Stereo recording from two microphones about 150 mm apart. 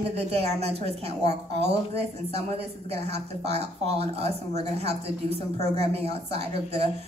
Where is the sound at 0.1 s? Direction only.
45° right (ahead or behind).